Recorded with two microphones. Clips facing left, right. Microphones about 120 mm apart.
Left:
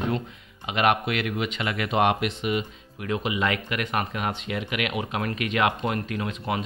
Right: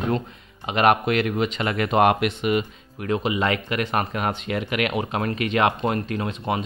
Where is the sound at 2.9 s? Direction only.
40° right (ahead or behind).